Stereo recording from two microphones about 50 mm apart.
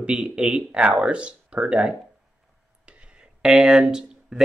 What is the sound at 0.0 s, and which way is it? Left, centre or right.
Speech, centre.